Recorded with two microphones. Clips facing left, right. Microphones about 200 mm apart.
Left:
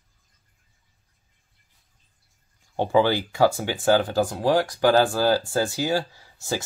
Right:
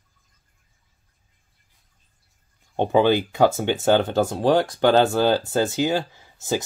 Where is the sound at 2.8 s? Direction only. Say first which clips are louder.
Right 2 dB; 20° right (ahead or behind).